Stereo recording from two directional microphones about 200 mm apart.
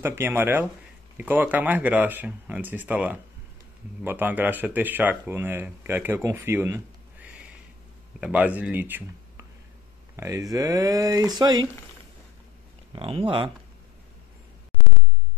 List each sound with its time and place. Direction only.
0.0 s speech: 10° right (ahead or behind)
12.9 s speech: 25° right (ahead or behind)